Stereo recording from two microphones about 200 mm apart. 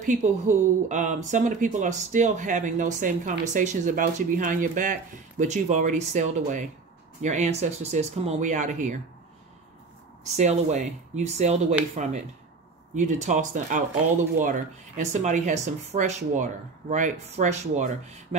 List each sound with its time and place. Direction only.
0.0 s speech: 35° right (ahead or behind)
10.2 s speech: 35° right (ahead or behind)